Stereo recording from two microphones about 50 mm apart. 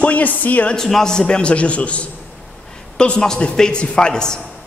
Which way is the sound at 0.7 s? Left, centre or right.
Centre.